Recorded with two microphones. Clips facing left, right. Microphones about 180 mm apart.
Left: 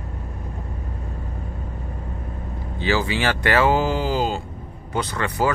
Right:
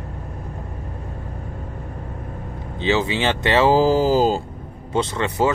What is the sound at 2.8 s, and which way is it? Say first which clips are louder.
Speech: right 2 dB; 20° right (ahead or behind).